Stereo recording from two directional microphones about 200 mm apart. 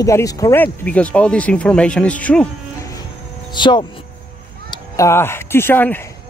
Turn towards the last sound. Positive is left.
turn(degrees=10)  # may be behind; listen again after turning